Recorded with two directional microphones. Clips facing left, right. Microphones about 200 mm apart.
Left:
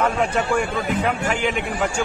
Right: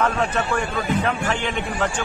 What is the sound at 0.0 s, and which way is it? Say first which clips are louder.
A man's voice: left 1 dB; 10° left (ahead or behind).